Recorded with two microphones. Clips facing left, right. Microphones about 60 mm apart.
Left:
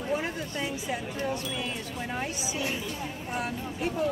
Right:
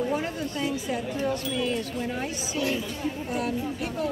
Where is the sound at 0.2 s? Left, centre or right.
Centre.